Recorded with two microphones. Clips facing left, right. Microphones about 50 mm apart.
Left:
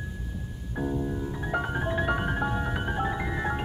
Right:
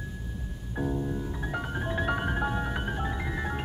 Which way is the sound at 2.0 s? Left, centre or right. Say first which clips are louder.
Even; centre.